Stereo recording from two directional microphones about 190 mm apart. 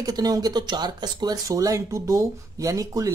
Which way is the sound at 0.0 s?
20° right (ahead or behind).